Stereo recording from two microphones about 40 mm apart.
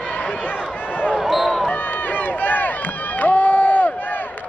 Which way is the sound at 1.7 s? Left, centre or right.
Left.